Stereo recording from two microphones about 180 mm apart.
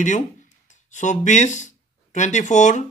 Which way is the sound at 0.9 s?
45° left (ahead or behind).